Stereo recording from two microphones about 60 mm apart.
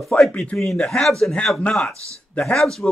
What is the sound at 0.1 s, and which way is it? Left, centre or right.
Speech, left.